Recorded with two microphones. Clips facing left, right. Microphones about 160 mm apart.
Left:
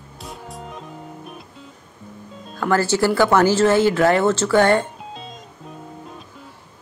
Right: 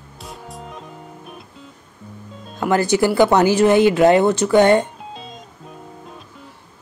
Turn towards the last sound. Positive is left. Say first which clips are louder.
# right 3 dB
turn(degrees=-15)  # may be behind; listen again after turning